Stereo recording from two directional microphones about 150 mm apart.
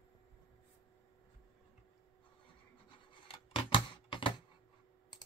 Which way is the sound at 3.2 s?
35° left (ahead or behind).